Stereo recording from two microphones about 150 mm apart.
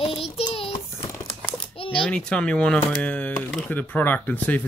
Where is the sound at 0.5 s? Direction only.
35° left (ahead or behind).